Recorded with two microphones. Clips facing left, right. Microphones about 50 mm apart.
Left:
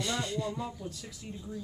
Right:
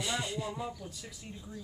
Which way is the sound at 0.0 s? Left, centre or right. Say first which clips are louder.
Left 2 dB; centre.